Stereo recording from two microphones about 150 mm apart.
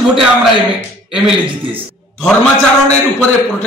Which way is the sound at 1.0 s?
Centre (ahead or behind).